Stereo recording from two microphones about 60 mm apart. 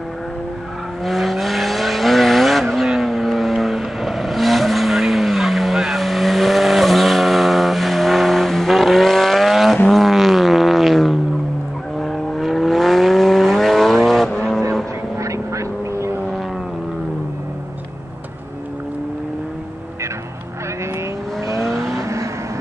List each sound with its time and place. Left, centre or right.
1.0 s vehicle: centre
15.1 s vehicle: right
21.5 s vehicle: centre
21.9 s vehicle: right